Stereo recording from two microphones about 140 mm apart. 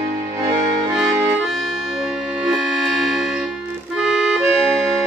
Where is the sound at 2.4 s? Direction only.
Centre (ahead or behind).